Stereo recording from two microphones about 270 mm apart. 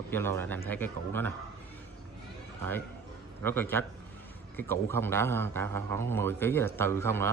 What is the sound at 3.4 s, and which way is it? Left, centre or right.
Speech, centre.